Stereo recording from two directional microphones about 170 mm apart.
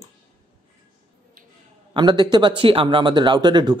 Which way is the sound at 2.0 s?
25° right (ahead or behind).